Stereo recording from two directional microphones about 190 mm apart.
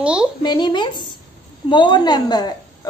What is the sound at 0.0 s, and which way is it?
Speech, 5° right (ahead or behind).